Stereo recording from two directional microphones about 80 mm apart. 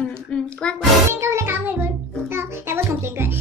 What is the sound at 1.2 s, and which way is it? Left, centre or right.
Music, right.